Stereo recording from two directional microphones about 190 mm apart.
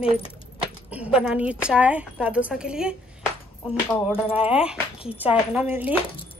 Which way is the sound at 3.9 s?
30° left (ahead or behind).